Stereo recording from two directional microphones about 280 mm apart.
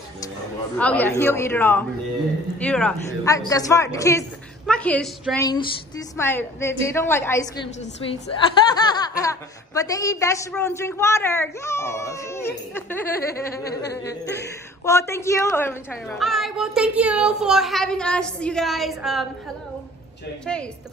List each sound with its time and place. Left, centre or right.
0.7 s a woman's voice: centre
20.4 s a woman's voice: centre